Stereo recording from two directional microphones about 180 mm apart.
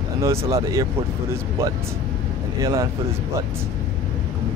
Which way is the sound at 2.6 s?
20° right (ahead or behind).